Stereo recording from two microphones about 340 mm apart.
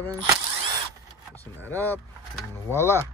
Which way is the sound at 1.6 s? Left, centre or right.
Centre.